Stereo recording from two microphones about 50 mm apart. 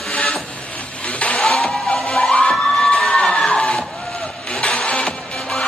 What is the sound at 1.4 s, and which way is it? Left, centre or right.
Music, centre.